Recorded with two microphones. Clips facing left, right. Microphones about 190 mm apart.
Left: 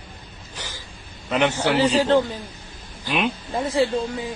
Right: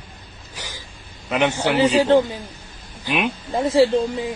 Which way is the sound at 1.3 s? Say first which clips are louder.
Right 1 dB; 10° right (ahead or behind).